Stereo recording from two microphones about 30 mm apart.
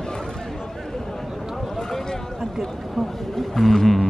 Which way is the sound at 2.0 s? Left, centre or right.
Centre.